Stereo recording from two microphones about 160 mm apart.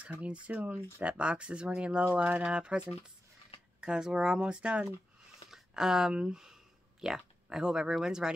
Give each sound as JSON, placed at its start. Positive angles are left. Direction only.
{"t": 0.0, "sound": "speech", "side_deg": -5}
{"t": 3.8, "sound": "speech", "side_deg": -5}